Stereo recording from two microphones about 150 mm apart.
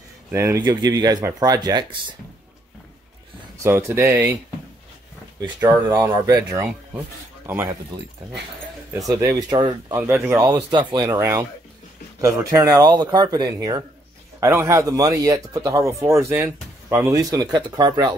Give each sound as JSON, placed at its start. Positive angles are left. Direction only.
{"t": 0.3, "sound": "speech", "side_deg": -20}
{"t": 3.5, "sound": "speech", "side_deg": -20}
{"t": 6.2, "sound": "speech", "side_deg": -20}
{"t": 9.1, "sound": "speech", "side_deg": -25}
{"t": 9.9, "sound": "speech", "side_deg": -15}